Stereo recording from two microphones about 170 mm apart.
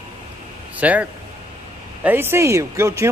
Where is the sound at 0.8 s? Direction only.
10° right (ahead or behind).